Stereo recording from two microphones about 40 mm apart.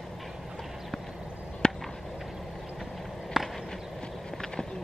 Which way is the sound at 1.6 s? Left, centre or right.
Left.